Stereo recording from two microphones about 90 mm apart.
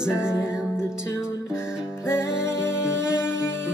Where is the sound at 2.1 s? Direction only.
30° left (ahead or behind).